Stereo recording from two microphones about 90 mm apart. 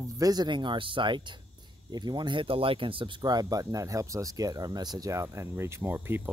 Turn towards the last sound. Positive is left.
turn(degrees=-25)  # may be behind; listen again after turning